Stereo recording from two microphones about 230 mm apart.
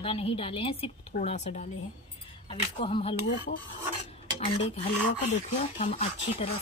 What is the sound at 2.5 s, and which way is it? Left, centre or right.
Cutlery, left.